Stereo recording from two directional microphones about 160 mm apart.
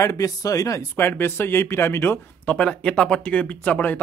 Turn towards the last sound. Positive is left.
turn(degrees=10)  # may be behind; listen again after turning